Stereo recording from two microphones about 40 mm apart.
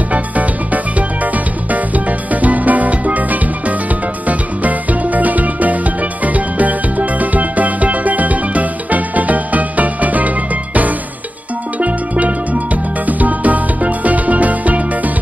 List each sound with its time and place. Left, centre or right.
0.9 s music: right
13.0 s music: right